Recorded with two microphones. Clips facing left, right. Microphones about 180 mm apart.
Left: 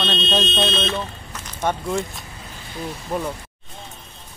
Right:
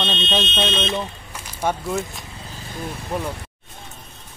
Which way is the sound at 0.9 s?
15° right (ahead or behind).